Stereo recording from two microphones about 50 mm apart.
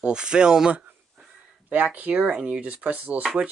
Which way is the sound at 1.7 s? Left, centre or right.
Right.